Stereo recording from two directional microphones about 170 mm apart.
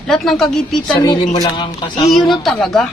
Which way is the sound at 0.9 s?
25° left (ahead or behind).